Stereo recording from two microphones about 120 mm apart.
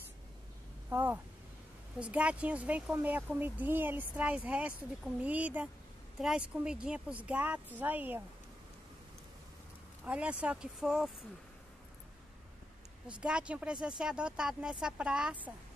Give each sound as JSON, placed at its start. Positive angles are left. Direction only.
{"t": 0.8, "sound": "speech", "side_deg": -20}
{"t": 10.0, "sound": "speech", "side_deg": -10}
{"t": 13.0, "sound": "speech", "side_deg": -10}